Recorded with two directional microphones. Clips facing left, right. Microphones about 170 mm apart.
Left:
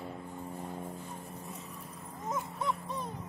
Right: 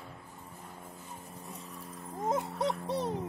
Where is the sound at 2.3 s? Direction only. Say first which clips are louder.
Right 2 dB; 75° right (ahead or behind).